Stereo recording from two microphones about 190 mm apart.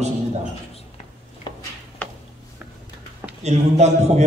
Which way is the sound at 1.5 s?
25° left (ahead or behind).